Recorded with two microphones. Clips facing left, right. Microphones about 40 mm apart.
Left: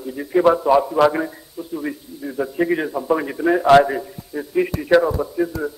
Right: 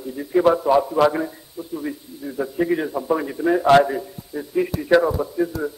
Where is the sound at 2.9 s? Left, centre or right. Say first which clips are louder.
Left 2 dB; centre.